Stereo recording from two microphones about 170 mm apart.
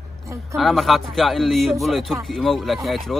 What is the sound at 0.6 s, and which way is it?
A man's voice, centre (ahead or behind).